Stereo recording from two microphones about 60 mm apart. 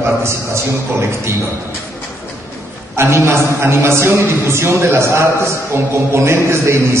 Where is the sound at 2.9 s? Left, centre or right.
Right.